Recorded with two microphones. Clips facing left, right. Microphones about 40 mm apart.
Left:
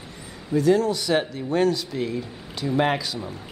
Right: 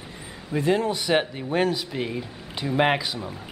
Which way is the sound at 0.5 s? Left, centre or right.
Right.